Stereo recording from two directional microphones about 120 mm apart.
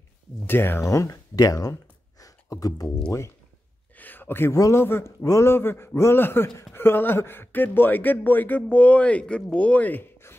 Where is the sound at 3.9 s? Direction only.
15° left (ahead or behind).